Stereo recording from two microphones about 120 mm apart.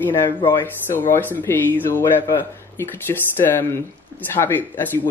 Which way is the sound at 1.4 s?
15° left (ahead or behind).